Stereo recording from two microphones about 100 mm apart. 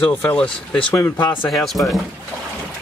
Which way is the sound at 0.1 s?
20° left (ahead or behind).